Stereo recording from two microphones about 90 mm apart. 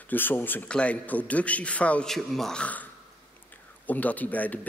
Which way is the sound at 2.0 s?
5° left (ahead or behind).